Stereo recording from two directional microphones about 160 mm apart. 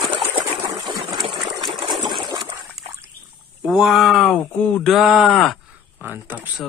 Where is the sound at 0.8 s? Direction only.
25° right (ahead or behind).